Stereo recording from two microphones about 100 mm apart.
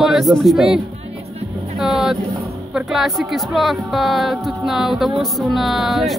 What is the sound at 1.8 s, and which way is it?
Vehicle, 5° right (ahead or behind).